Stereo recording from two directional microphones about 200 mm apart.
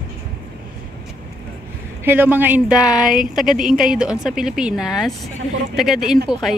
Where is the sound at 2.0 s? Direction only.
10° right (ahead or behind).